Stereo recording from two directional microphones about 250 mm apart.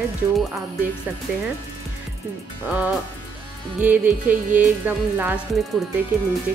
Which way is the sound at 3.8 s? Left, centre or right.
Centre.